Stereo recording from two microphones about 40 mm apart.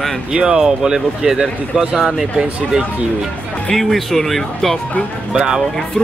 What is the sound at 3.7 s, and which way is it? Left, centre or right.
Speech, centre.